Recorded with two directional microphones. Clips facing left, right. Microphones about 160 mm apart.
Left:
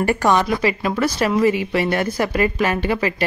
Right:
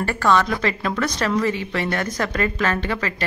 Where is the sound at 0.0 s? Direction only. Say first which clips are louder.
Left 2 dB; 15° left (ahead or behind).